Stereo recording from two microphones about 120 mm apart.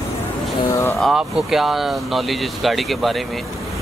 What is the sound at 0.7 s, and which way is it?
Vehicle, 25° left (ahead or behind).